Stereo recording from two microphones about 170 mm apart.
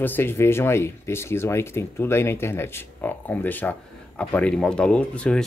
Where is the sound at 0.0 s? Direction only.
10° left (ahead or behind).